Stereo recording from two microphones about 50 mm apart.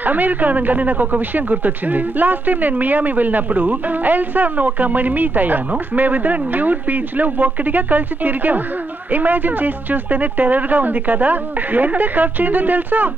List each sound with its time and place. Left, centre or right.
0.0 s speech: right